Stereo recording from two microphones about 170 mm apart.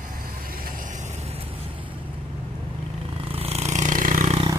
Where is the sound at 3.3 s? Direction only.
35° right (ahead or behind).